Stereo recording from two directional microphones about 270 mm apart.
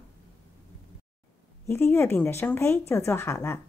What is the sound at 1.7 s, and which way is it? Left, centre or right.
Speech, centre.